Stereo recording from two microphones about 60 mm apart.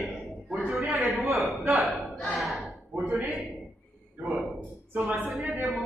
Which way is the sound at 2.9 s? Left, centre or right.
Right.